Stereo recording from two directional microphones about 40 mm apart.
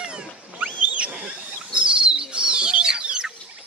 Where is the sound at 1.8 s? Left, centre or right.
Right.